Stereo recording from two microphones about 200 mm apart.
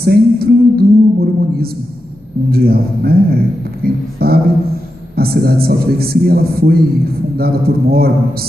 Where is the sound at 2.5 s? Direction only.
50° right (ahead or behind).